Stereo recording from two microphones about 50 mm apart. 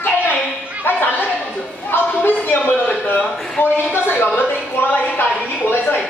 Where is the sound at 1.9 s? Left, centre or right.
Left.